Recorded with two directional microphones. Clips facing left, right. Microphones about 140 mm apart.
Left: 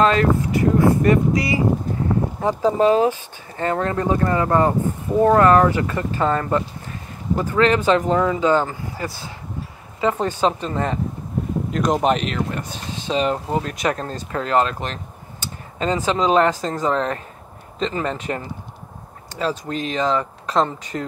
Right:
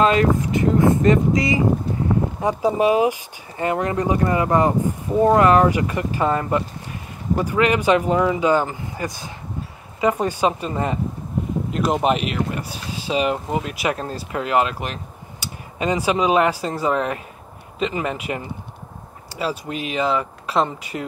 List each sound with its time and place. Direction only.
0.0 s speech: 20° right (ahead or behind)